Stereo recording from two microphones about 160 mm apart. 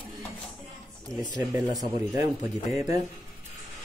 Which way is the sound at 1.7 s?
25° right (ahead or behind).